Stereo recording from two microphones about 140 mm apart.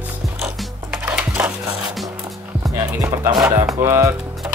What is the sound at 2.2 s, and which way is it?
Music, 25° right (ahead or behind).